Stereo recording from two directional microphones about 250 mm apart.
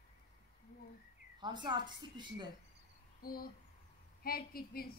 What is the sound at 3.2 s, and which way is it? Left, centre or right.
A woman's voice, left.